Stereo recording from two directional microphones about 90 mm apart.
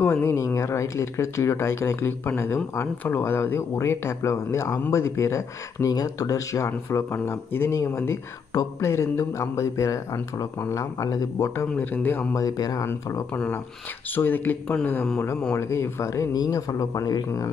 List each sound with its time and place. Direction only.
0.0 s speech: 25° left (ahead or behind); by 11.5 s 40° left (ahead or behind)
11.7 s speech: 20° left (ahead or behind)
12.4 s speech: 45° left (ahead or behind)
14.1 s speech: 20° left (ahead or behind)
15.5 s speech: 30° left (ahead or behind)
16.3 s speech: 40° left (ahead or behind)